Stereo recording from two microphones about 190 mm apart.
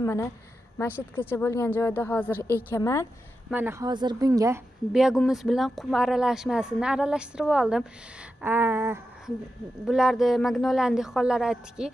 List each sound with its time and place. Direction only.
0.0 s a woman's voice: 15° left (ahead or behind)
3.5 s speech: 10° right (ahead or behind)
4.9 s speech: centre (ahead or behind)
8.4 s a sound: 10° right (ahead or behind)
9.8 s speech: 5° right (ahead or behind)